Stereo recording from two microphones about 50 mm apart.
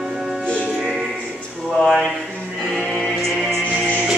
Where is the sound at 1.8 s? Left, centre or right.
Centre.